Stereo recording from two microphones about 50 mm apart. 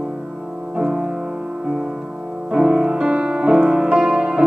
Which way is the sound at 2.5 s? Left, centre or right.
Centre.